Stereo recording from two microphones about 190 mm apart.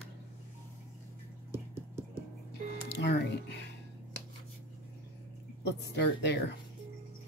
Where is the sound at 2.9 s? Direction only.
60° left (ahead or behind).